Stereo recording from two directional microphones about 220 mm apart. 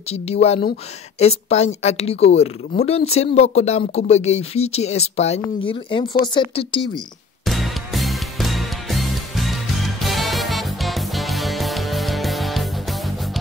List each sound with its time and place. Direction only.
0.1 s speech: 30° left (ahead or behind)
7.4 s music: centre (ahead or behind)